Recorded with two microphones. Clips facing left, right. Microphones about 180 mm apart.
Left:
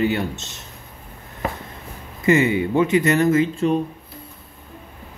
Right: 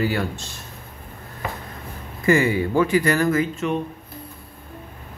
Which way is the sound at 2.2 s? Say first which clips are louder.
Left 1 dB; 20° left (ahead or behind).